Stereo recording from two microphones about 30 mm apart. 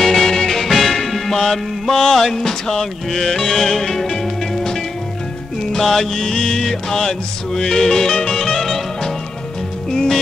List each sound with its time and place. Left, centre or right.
0.0 s music: centre
0.6 s music: centre